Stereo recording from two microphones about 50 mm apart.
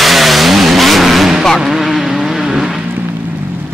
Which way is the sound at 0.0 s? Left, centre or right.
Centre.